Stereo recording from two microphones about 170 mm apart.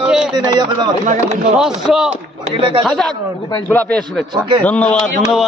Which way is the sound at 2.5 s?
30° right (ahead or behind).